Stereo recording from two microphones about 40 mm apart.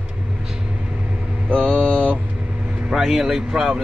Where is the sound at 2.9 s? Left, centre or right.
Centre.